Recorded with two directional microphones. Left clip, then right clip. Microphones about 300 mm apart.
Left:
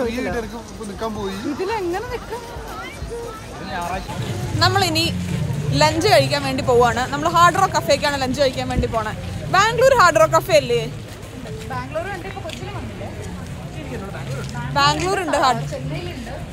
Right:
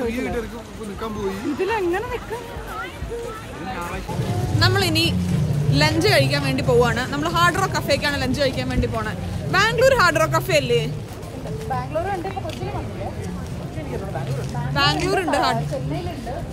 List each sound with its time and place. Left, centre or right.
4.6 s a woman's voice: centre
11.7 s music: right
14.7 s a woman's voice: centre